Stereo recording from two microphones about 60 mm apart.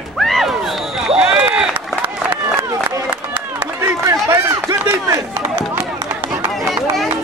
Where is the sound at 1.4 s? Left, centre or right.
Centre.